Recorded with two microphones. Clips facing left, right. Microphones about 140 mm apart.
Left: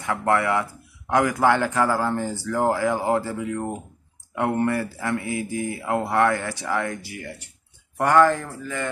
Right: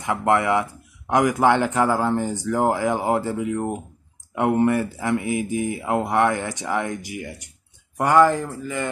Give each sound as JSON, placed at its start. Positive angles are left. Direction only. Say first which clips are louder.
{"t": 0.0, "sound": "speech", "louder": "right 2 dB", "side_deg": -20}